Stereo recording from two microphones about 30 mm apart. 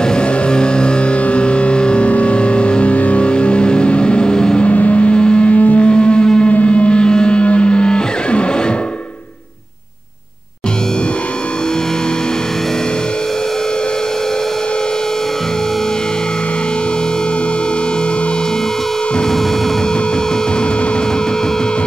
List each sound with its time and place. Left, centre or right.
0.1 s vehicle: left
2.0 s music: left
4.7 s vehicle: left
5.1 s a sound: left
5.5 s a sound: left
5.8 s music: left
6.5 s music: left